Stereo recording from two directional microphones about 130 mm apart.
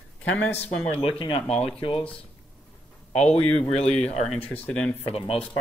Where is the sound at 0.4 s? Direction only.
15° left (ahead or behind).